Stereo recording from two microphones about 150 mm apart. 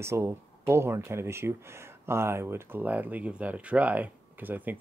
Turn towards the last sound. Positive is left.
turn(degrees=-10)  # may be behind; listen again after turning